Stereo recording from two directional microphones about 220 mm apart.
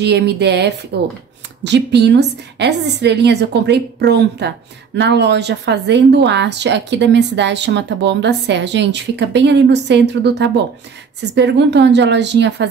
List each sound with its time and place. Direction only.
0.0 s a woman's voice: 50° right (ahead or behind)